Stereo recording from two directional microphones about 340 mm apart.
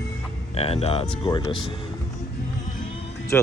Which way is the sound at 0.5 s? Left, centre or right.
Centre.